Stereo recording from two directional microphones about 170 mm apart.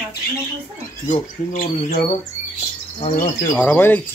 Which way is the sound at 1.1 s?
50° left (ahead or behind).